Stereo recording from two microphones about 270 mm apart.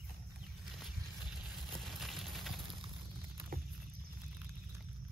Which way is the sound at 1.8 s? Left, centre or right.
Centre.